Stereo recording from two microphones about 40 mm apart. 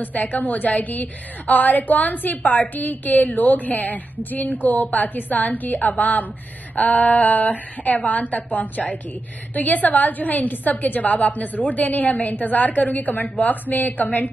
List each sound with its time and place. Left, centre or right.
0.0 s a woman's voice: left